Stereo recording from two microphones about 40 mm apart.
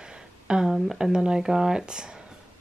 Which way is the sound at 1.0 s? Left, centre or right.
Centre.